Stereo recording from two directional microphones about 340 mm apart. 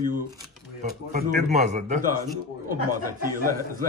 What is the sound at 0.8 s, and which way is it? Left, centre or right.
Speech, right.